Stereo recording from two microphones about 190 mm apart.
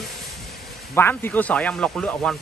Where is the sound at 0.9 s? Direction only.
10° left (ahead or behind).